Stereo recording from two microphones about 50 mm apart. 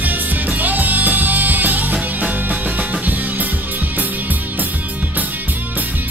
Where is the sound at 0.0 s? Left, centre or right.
Right.